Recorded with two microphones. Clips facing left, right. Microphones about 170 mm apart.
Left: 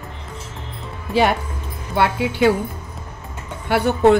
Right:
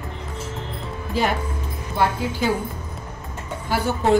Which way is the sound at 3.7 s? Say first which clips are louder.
Left 5 dB; 65° left (ahead or behind).